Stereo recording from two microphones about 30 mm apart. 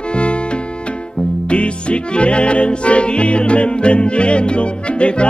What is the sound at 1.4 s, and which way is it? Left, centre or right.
Music, left.